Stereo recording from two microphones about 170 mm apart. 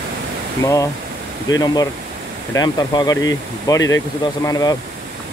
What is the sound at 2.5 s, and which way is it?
Speech, 20° left (ahead or behind).